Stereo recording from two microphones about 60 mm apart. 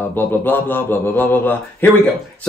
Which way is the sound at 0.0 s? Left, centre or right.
Left.